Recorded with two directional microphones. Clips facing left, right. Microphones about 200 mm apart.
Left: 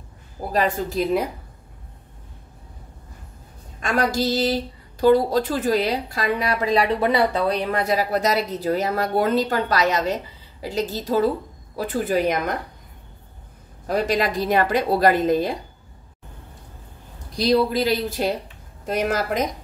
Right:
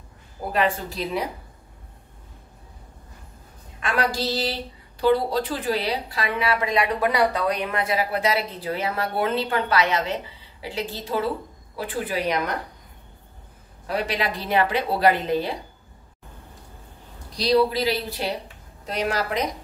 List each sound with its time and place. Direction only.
0.5 s a woman's voice: 40° left (ahead or behind)
3.8 s a woman's voice: 45° left (ahead or behind)
13.8 s a woman's voice: 45° left (ahead or behind)
17.4 s a woman's voice: 50° left (ahead or behind)